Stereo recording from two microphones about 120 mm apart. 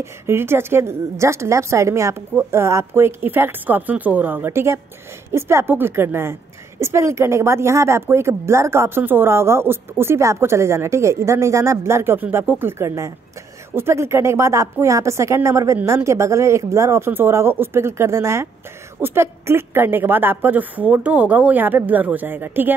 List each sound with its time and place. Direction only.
0.0 s a woman's voice: 20° right (ahead or behind)